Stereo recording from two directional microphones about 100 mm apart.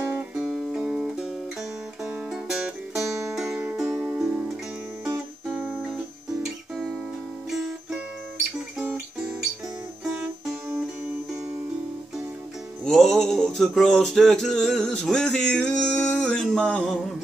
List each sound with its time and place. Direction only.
0.0 s music: 10° right (ahead or behind)
4.0 s music: 25° right (ahead or behind)
5.0 s music: 5° right (ahead or behind)
12.8 s music: 5° left (ahead or behind)